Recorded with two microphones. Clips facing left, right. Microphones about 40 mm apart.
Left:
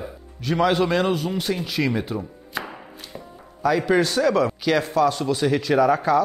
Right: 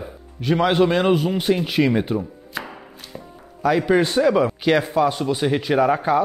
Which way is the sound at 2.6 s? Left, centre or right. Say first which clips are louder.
Even; centre.